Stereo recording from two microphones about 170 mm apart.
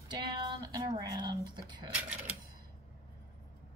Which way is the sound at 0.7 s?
25° right (ahead or behind).